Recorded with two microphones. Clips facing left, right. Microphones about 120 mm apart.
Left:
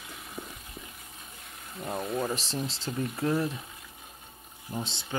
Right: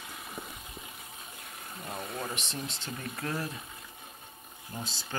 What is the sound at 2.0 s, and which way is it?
Speech, 30° left (ahead or behind).